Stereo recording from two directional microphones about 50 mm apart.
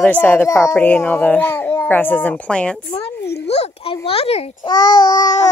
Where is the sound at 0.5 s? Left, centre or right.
Left.